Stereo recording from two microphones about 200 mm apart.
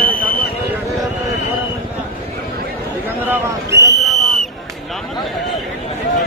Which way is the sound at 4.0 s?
Centre (ahead or behind).